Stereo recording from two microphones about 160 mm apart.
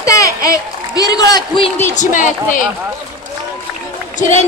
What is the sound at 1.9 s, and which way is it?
Speech, 50° left (ahead or behind).